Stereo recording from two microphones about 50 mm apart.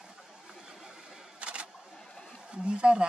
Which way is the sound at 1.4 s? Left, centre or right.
Right.